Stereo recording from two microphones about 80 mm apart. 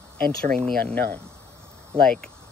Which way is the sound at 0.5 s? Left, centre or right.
Centre.